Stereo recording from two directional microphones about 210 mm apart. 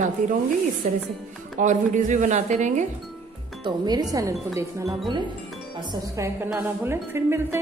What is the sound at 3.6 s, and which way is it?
Speech, 20° right (ahead or behind).